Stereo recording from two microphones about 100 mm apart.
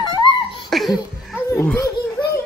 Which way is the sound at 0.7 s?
Centre (ahead or behind).